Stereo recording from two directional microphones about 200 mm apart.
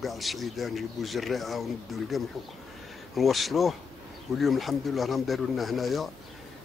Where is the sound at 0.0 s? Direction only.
Centre (ahead or behind).